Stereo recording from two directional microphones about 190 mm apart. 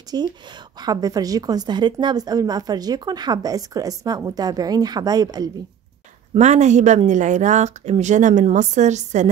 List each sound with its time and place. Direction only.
0.1 s a woman's voice: 20° right (ahead or behind)
6.3 s speech: 35° right (ahead or behind)